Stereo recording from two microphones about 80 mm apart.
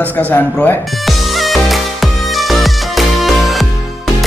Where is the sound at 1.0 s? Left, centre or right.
Centre.